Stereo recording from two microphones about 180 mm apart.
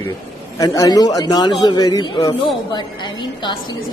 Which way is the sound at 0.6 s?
20° left (ahead or behind).